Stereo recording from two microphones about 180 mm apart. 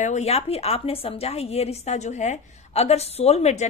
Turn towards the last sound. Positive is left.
turn(degrees=40)  # may be behind; listen again after turning